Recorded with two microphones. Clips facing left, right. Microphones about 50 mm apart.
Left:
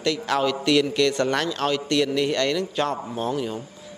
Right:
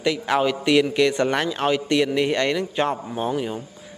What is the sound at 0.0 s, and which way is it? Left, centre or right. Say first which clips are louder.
A man's voice: right 2 dB; centre.